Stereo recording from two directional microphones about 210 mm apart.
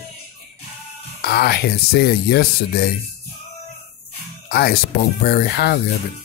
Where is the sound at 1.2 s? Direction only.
50° left (ahead or behind).